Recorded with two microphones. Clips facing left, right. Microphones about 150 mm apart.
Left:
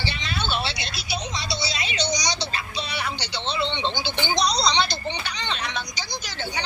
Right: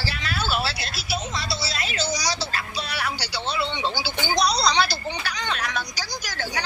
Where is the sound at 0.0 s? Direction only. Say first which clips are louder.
Right 1 dB; 5° right (ahead or behind).